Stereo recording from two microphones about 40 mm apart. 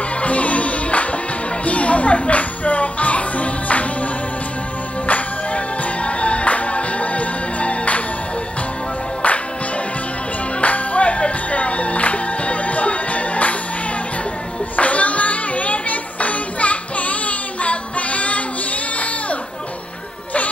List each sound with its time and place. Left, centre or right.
0.1 s music: left
10.6 s music: left
14.8 s music: left